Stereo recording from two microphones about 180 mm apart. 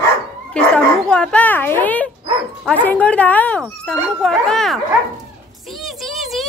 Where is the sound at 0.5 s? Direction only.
5° left (ahead or behind).